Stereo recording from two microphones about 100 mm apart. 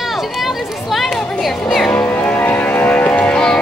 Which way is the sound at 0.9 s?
Centre (ahead or behind).